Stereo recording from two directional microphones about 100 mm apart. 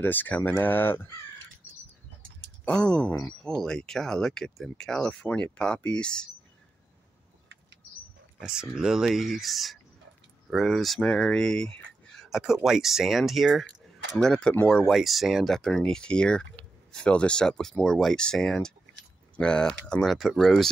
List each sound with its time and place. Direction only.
0.0 s speech: 20° left (ahead or behind)
2.6 s speech: 10° left (ahead or behind)
8.4 s speech: 5° right (ahead or behind)